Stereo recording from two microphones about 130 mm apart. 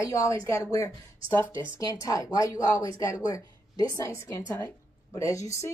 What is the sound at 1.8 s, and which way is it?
A woman's voice, 30° left (ahead or behind).